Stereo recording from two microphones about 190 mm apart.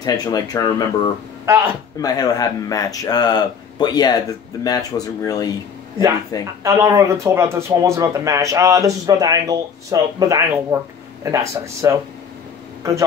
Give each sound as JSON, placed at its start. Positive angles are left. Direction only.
{"t": 0.0, "sound": "speech", "side_deg": 20}
{"t": 1.4, "sound": "speech", "side_deg": -15}
{"t": 2.0, "sound": "speech", "side_deg": 20}
{"t": 6.6, "sound": "speech", "side_deg": -15}